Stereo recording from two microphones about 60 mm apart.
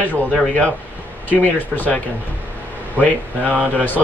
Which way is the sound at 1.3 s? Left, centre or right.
Left.